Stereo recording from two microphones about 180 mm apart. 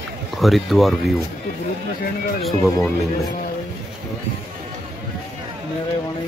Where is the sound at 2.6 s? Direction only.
15° left (ahead or behind).